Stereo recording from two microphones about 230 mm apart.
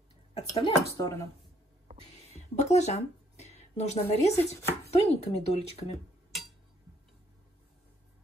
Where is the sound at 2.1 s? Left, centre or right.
Left.